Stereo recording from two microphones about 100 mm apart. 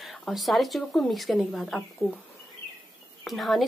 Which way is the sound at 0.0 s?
Centre (ahead or behind).